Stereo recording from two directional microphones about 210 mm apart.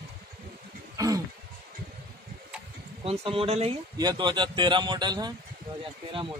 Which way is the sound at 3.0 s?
25° right (ahead or behind).